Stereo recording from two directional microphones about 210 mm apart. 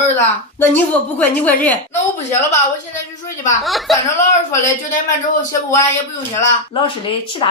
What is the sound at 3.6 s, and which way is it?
Speech, centre (ahead or behind).